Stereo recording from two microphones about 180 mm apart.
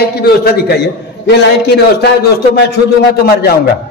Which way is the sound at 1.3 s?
70° left (ahead or behind).